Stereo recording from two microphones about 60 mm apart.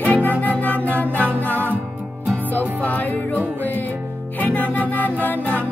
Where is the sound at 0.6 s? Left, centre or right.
Left.